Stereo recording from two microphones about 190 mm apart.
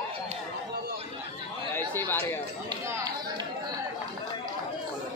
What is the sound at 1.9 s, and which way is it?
Chatter, 10° left (ahead or behind).